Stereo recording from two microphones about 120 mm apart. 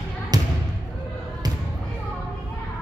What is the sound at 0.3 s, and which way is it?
Basketball bounce, 35° right (ahead or behind).